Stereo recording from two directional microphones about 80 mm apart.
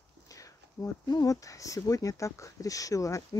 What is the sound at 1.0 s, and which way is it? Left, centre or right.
Speech, left.